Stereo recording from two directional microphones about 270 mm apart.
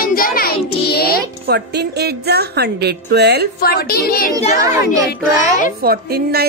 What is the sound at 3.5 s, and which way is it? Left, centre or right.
Speech, left.